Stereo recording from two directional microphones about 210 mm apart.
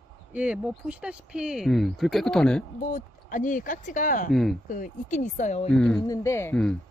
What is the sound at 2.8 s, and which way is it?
Speech, 40° left (ahead or behind).